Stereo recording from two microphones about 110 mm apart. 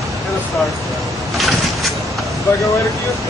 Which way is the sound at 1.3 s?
Centre (ahead or behind).